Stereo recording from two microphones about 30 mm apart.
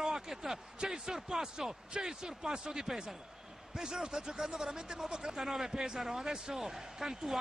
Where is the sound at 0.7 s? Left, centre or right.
Right.